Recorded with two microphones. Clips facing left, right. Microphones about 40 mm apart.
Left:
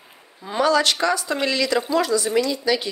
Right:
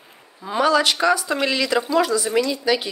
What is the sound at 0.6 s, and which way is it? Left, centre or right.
Speech, centre.